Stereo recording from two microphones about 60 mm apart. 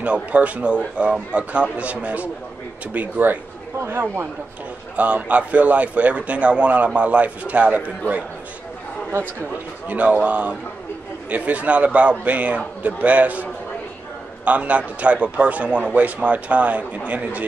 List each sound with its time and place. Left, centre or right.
0.0 s a man's voice: right
3.8 s speech: right
4.9 s a man's voice: right
9.1 s speech: right
9.8 s a man's voice: right